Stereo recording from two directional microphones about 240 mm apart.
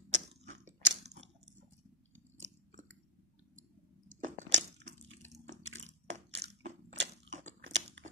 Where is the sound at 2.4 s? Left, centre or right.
Right.